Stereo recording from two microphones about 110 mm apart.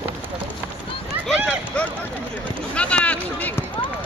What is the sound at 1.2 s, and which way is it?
Run, 5° left (ahead or behind).